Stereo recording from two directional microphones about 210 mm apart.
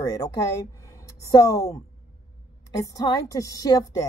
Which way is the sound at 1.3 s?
15° left (ahead or behind).